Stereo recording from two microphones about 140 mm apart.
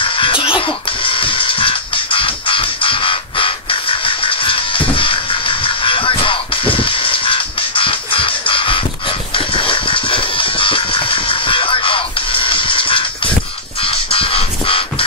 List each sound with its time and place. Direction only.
0.0 s music: 40° left (ahead or behind)